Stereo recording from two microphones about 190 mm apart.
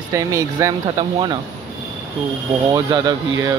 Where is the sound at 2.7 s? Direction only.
20° right (ahead or behind).